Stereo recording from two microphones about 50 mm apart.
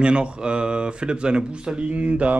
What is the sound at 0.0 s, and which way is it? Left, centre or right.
Speech, right.